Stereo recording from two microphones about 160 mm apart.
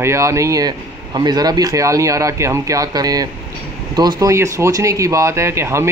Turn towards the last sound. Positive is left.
turn(degrees=-15)  # may be behind; listen again after turning